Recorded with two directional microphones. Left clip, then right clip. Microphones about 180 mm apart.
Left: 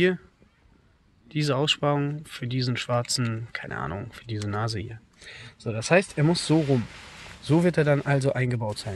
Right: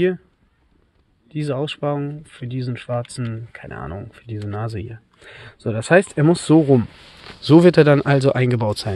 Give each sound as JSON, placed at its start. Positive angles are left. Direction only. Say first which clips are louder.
{"t": 1.3, "sound": "speech", "louder": "even", "side_deg": -15}
{"t": 5.2, "sound": "speech", "louder": "right 7 dB", "side_deg": -40}